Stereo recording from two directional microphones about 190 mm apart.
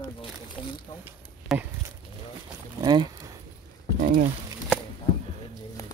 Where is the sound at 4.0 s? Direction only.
40° right (ahead or behind).